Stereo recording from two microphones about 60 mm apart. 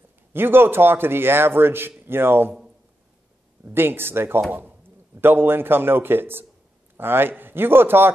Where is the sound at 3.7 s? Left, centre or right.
Right.